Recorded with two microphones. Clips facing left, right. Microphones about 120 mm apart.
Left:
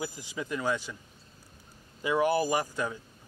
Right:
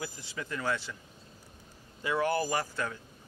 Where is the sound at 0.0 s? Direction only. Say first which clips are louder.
Left 4 dB; 15° left (ahead or behind).